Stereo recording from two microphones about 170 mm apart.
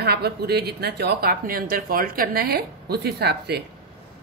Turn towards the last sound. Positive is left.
turn(degrees=-75)  # may be behind; listen again after turning